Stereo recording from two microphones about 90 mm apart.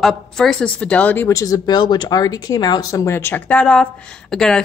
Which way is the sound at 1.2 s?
35° left (ahead or behind).